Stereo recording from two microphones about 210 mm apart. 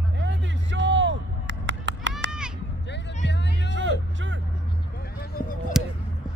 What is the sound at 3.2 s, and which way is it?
Music, 55° left (ahead or behind).